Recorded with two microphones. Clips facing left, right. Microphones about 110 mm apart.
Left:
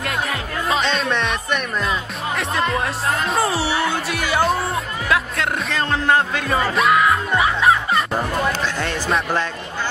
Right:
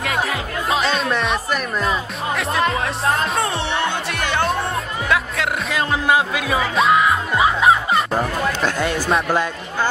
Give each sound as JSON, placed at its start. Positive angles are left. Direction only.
{"t": 0.0, "sound": "music", "side_deg": 0}
{"t": 6.8, "sound": "music", "side_deg": -25}
{"t": 7.9, "sound": "music", "side_deg": -5}